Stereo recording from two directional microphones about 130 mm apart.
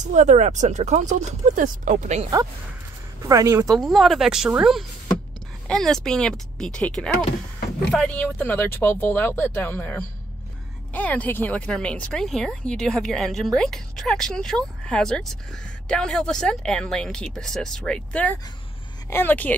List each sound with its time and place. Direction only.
0.0 s speech: 65° right (ahead or behind)
3.2 s speech: 25° right (ahead or behind)
3.7 s speech: centre (ahead or behind)